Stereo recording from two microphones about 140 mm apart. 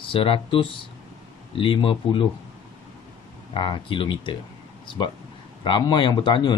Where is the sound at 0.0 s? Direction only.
40° left (ahead or behind).